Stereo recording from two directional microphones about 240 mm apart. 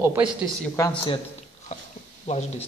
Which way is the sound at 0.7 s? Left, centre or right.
Centre.